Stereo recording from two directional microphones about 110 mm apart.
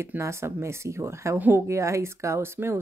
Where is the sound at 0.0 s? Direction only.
25° right (ahead or behind).